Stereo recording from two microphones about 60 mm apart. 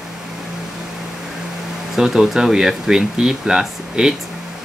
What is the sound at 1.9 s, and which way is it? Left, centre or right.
Speech, centre.